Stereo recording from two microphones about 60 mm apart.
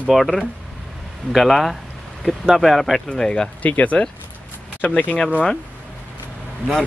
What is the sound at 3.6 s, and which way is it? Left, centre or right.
Speech, left.